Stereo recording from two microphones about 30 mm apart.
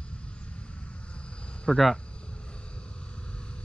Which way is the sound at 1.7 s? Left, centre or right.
Left.